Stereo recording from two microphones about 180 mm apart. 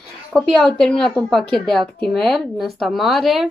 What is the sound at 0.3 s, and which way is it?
Speech, 5° left (ahead or behind).